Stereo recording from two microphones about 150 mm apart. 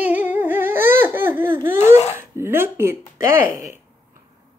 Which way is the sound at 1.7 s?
45° left (ahead or behind).